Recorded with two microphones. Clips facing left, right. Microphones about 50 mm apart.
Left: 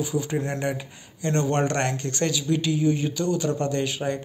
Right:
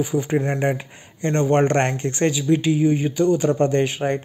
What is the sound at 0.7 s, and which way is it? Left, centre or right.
Speech, right.